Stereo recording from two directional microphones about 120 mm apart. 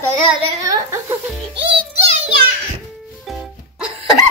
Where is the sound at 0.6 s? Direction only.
25° right (ahead or behind).